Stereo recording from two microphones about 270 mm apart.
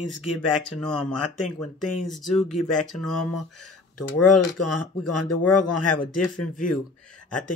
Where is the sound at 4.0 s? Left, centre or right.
Centre.